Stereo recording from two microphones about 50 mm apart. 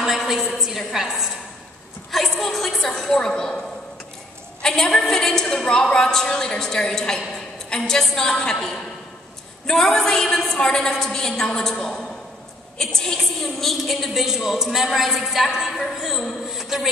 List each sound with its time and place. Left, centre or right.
0.6 s a woman's voice: centre
4.6 s a woman's voice: centre